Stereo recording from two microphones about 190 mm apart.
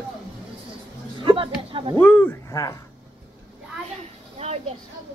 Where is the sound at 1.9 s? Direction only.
10° left (ahead or behind).